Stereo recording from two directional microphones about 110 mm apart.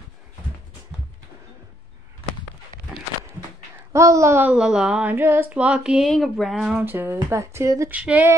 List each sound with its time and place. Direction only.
3.9 s speech: 30° right (ahead or behind)
4.5 s a woman's voice: 5° right (ahead or behind)
5.1 s a sound: 20° right (ahead or behind); by 6.8 s 5° right (ahead or behind)
6.8 s speech: 20° right (ahead or behind)
7.9 s a woman's voice: 15° right (ahead or behind)